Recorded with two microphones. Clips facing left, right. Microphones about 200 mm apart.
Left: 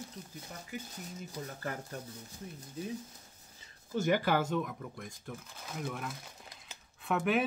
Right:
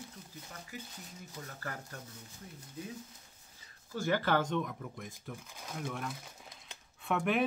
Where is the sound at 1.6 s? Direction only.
20° left (ahead or behind).